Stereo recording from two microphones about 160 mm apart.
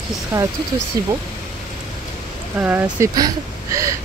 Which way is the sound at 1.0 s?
20° right (ahead or behind).